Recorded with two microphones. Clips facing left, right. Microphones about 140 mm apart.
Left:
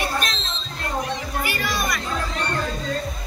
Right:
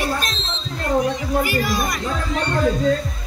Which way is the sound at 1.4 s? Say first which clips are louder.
Right 5 dB; 40° right (ahead or behind).